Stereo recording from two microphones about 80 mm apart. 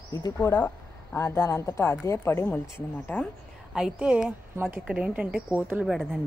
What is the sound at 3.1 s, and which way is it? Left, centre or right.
Speech, centre.